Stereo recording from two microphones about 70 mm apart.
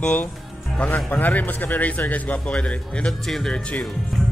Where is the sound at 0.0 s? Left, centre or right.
Centre.